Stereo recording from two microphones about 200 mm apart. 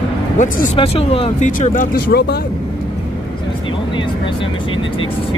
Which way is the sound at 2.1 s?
50° left (ahead or behind).